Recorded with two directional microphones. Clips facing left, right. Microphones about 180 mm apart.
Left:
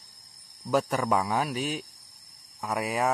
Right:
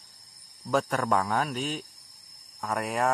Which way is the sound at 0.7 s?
5° left (ahead or behind).